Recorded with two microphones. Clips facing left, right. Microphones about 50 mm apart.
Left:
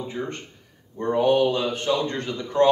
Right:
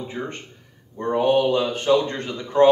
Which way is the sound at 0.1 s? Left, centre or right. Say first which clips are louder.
Even; centre.